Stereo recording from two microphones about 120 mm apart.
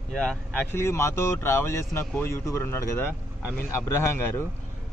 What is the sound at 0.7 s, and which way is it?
Speech, 20° left (ahead or behind).